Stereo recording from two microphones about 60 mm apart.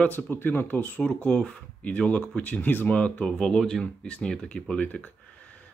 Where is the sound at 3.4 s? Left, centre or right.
Centre.